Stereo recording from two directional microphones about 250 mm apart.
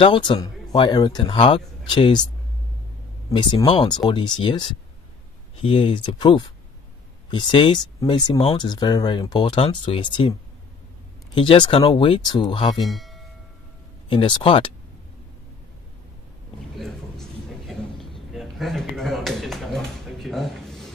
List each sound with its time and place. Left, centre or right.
0.0 s speech: centre
3.3 s speech: centre
11.3 s speech: centre
12.8 s a sound: centre
14.0 s speech: centre
16.7 s a sound: centre